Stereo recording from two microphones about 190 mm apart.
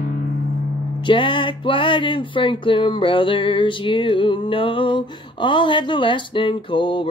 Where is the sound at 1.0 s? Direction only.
25° left (ahead or behind).